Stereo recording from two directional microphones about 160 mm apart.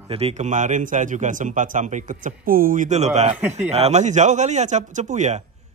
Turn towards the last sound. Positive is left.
turn(degrees=-45)  # may be behind; listen again after turning